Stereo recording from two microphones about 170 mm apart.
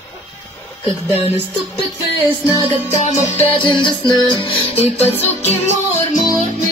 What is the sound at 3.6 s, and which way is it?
Music, 25° left (ahead or behind).